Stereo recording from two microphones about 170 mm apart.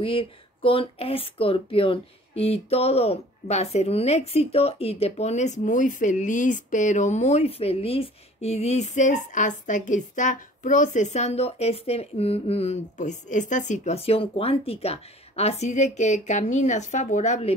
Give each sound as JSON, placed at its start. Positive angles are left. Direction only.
{"t": 0.0, "sound": "speech", "side_deg": 30}